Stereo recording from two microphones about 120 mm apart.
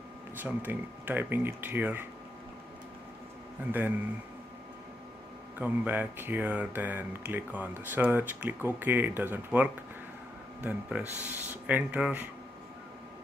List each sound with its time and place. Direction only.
0.4 s speech: 15° right (ahead or behind)
5.6 s speech: 15° right (ahead or behind)